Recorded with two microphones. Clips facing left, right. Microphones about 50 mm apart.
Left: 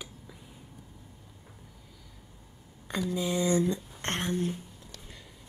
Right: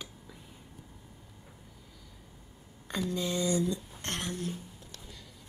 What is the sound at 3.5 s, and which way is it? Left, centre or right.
Speech, left.